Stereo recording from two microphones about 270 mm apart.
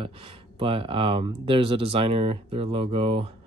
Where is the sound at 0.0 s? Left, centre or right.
Centre.